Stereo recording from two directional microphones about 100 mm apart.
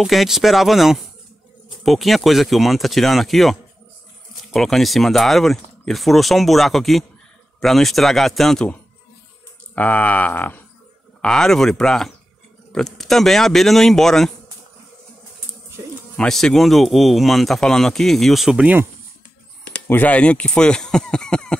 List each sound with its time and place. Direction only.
0.0 s speech: centre (ahead or behind)
4.6 s speech: centre (ahead or behind)
9.8 s speech: 15° left (ahead or behind)
11.1 s speech: 5° left (ahead or behind)
16.2 s speech: 5° left (ahead or behind)
19.9 s speech: 15° left (ahead or behind)